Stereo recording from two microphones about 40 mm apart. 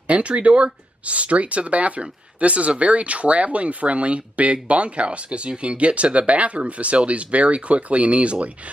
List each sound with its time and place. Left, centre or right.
0.1 s speech: right